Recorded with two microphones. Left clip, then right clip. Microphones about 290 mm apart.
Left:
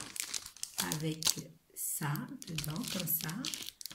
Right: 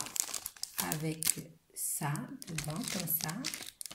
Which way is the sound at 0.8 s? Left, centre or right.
Left.